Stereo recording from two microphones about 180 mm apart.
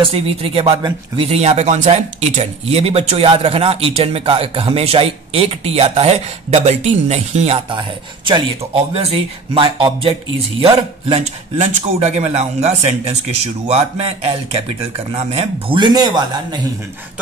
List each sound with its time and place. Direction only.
0.0 s speech: 30° right (ahead or behind)